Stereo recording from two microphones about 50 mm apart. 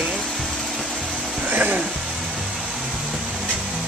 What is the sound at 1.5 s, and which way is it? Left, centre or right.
Music, right.